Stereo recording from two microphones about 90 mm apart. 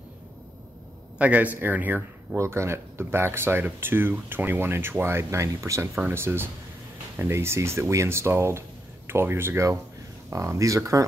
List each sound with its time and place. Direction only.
1.1 s speech: 15° right (ahead or behind)
2.3 s speech: 30° right (ahead or behind)